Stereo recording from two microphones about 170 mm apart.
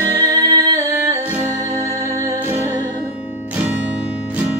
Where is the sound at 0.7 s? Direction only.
15° right (ahead or behind).